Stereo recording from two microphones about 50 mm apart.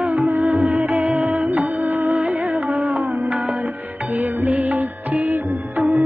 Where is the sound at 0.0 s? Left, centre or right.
Right.